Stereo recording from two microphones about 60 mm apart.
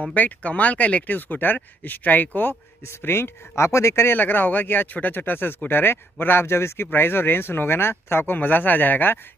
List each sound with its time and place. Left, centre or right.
0.0 s speech: left
3.0 s speech: left